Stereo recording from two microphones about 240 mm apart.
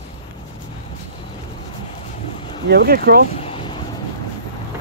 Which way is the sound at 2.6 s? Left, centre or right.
Right.